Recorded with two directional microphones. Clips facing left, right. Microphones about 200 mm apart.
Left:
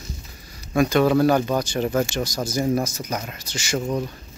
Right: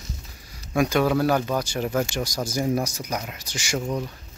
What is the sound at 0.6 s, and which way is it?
Speech, 10° right (ahead or behind).